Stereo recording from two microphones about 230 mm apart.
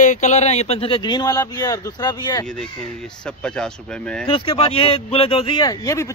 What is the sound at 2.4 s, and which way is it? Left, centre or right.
Speech, centre.